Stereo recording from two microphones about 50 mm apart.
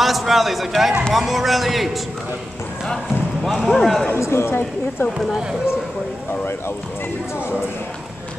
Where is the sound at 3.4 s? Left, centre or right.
Centre.